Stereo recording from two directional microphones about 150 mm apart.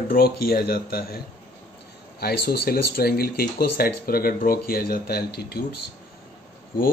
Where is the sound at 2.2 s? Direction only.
90° left.